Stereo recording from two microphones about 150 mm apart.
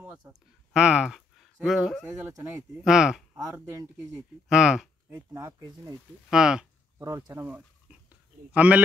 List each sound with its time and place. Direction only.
0.7 s speech: 5° right (ahead or behind)
3.3 s speech: 20° right (ahead or behind)
4.5 s speech: 5° right (ahead or behind)
5.1 s speech: 15° right (ahead or behind)
6.3 s speech: 5° right (ahead or behind)
7.0 s speech: 25° right (ahead or behind)
7.9 s a sound: 10° right (ahead or behind)
8.5 s speech: 10° right (ahead or behind)